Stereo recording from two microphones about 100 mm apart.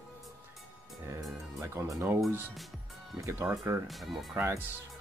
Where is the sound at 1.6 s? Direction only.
30° right (ahead or behind).